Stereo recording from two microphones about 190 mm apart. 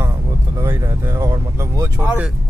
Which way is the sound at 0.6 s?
15° right (ahead or behind).